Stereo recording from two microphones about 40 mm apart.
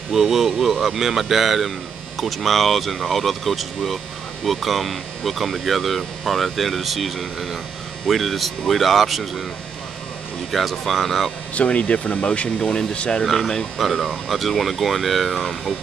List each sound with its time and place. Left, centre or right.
0.1 s speech: centre
10.5 s speech: centre
11.5 s speech: left
13.2 s speech: centre